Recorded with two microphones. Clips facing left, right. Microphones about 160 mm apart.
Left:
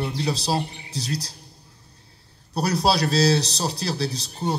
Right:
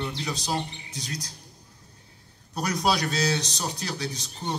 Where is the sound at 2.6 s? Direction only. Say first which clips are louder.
Left 4 dB; 35° left (ahead or behind).